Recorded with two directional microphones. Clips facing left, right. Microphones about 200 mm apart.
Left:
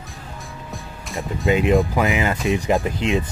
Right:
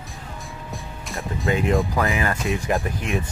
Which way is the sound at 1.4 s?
20° left (ahead or behind).